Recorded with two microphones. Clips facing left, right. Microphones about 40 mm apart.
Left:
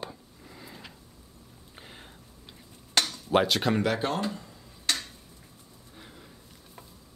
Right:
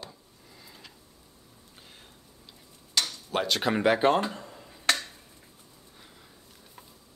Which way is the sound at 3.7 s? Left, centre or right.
Right.